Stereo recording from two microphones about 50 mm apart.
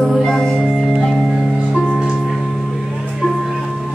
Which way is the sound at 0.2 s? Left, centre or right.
Centre.